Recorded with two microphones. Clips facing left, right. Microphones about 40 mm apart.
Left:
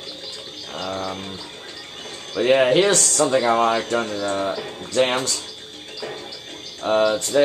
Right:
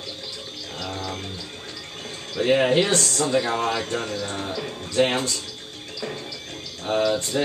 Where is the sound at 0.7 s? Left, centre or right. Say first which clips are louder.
Left 5 dB; left.